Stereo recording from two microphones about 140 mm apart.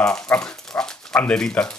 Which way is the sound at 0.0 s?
5° left (ahead or behind).